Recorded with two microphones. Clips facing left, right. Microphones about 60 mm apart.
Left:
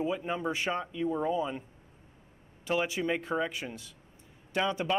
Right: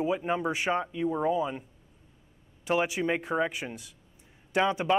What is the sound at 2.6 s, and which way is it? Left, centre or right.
Speech, centre.